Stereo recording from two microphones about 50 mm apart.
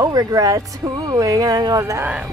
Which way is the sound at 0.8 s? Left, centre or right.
Right.